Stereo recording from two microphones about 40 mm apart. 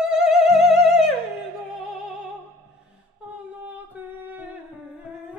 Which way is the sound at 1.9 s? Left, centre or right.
Centre.